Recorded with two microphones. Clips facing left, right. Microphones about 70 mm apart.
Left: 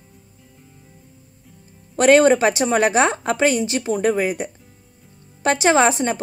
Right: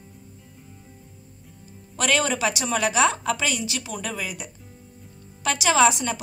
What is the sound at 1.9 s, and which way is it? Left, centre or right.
Speech, left.